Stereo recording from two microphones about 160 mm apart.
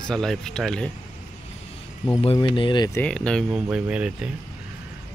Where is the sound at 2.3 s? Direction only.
30° left (ahead or behind).